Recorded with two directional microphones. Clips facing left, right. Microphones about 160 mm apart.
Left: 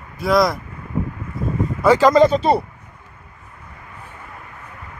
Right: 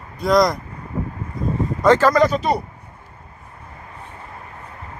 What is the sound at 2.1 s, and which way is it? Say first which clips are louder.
Speech: left 3 dB; 25° left (ahead or behind).